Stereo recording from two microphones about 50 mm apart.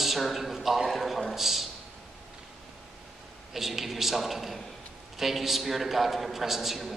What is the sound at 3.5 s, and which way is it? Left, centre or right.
A man's voice, centre.